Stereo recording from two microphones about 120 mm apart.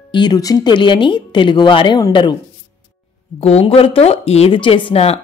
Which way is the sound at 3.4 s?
55° left (ahead or behind).